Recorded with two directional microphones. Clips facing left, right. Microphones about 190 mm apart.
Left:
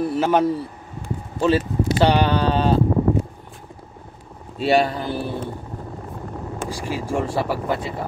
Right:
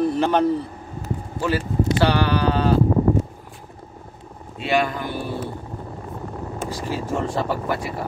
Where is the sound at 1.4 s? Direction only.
25° left (ahead or behind).